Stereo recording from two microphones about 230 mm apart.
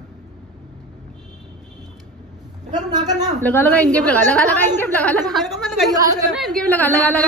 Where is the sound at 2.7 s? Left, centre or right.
Centre.